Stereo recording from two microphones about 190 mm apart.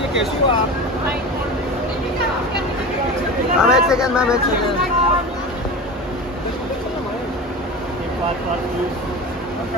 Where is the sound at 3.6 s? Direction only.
5° right (ahead or behind).